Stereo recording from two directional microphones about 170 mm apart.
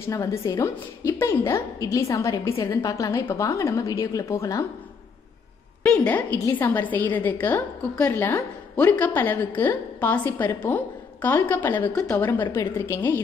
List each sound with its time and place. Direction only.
0.0 s a woman's voice: 15° left (ahead or behind)
5.9 s a woman's voice: 10° left (ahead or behind)